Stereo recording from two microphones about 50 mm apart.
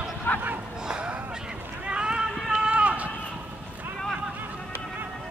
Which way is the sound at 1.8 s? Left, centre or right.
Centre.